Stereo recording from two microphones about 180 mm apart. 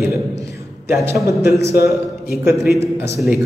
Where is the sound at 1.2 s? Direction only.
15° right (ahead or behind).